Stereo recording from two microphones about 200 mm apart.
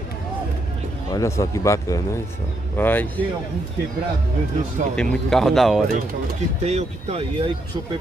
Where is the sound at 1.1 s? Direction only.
15° left (ahead or behind).